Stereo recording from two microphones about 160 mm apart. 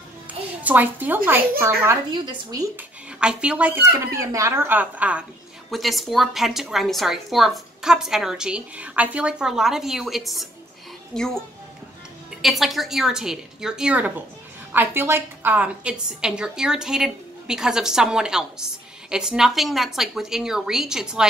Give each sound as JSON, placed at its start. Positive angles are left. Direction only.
{"t": 0.7, "sound": "speech", "side_deg": -10}
{"t": 3.2, "sound": "speech", "side_deg": -5}
{"t": 3.9, "sound": "a woman's voice", "side_deg": -20}